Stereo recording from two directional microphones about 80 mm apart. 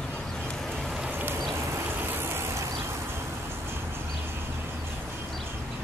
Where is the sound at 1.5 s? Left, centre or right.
Right.